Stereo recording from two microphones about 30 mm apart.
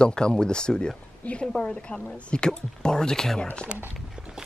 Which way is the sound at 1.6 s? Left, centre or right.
Left.